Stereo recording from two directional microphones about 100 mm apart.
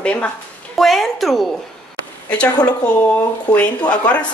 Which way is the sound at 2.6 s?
15° left (ahead or behind).